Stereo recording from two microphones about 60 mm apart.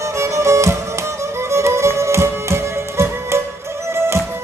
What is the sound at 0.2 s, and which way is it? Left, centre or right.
Music, right.